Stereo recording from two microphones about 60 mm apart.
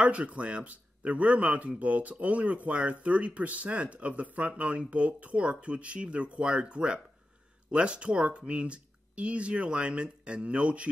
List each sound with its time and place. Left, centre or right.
0.0 s speech: right